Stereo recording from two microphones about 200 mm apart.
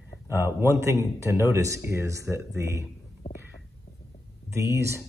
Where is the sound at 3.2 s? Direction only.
30° left (ahead or behind).